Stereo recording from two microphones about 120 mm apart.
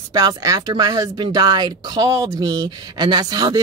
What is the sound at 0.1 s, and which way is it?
Speech, 30° right (ahead or behind).